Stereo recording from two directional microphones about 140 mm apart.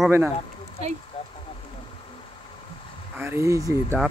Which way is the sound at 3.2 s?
15° right (ahead or behind).